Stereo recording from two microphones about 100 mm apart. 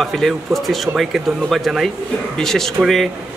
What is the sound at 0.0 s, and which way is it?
Speech, centre (ahead or behind).